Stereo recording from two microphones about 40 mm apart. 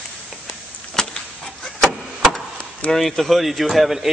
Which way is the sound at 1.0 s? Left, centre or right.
Centre.